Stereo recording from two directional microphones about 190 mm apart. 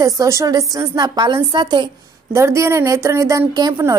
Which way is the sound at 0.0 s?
15° right (ahead or behind).